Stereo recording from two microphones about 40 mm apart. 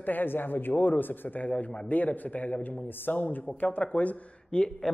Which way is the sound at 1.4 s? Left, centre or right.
Left.